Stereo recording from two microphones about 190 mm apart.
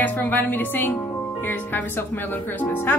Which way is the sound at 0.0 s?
10° left (ahead or behind).